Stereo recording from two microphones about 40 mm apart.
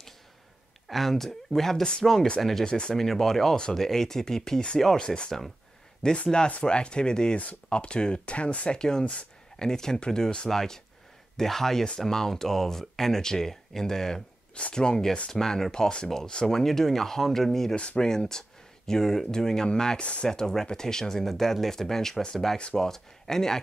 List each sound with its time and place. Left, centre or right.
0.8 s speech: centre; by 8.6 s left
8.6 s speech: centre
14.5 s speech: left
17.7 s speech: left
20.0 s speech: left
20.2 s speech: centre